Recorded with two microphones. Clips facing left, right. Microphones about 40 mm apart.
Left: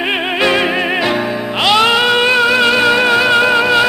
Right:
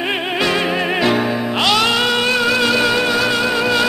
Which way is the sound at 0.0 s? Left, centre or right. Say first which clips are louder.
Left 4 dB; centre.